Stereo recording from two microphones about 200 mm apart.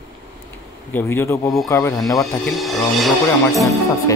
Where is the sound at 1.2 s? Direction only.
15° left (ahead or behind).